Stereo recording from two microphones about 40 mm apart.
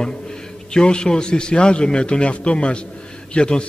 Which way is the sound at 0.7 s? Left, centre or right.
Left.